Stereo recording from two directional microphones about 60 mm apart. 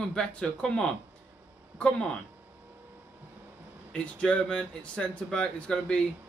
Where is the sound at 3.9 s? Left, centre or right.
Centre.